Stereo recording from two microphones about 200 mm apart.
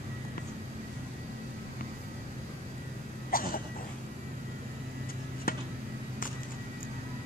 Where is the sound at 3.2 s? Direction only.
45° left (ahead or behind).